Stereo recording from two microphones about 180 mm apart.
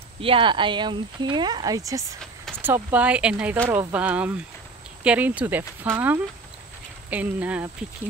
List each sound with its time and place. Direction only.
0.2 s speech: 30° right (ahead or behind); by 7.7 s 10° right (ahead or behind)